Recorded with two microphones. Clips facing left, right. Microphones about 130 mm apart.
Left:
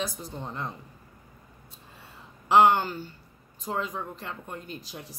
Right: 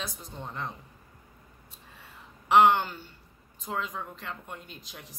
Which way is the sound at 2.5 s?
35° left (ahead or behind).